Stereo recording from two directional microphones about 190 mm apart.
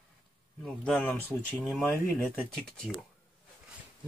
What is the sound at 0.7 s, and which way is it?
Speech, 5° left (ahead or behind).